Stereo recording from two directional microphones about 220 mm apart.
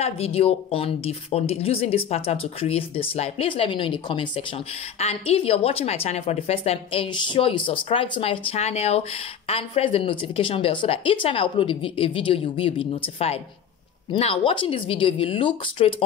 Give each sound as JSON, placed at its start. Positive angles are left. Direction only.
{"t": 0.0, "sound": "a woman's voice", "side_deg": 25}